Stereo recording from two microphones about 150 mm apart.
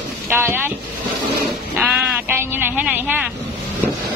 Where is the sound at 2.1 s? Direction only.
15° right (ahead or behind).